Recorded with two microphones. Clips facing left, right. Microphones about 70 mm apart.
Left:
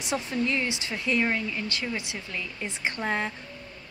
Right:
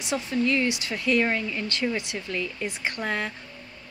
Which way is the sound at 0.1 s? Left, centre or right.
Left.